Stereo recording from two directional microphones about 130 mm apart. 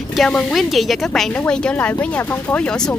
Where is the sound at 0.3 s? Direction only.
5° left (ahead or behind).